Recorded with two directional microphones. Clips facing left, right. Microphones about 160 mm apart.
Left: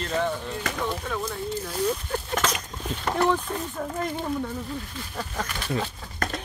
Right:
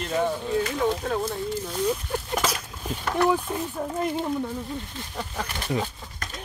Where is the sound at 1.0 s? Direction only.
35° right (ahead or behind).